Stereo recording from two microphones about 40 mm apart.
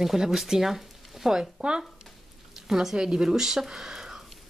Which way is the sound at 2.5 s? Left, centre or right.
Centre.